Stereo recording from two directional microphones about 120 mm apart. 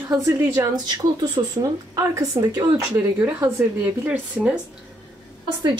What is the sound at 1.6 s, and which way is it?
Speech, 25° right (ahead or behind).